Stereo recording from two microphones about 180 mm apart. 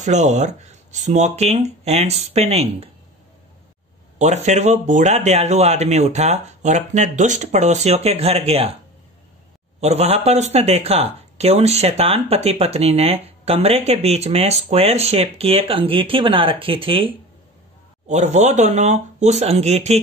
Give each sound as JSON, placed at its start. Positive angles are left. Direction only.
{"t": 0.0, "sound": "speech", "side_deg": -40}
{"t": 4.2, "sound": "speech", "side_deg": -40}
{"t": 9.8, "sound": "speech", "side_deg": -35}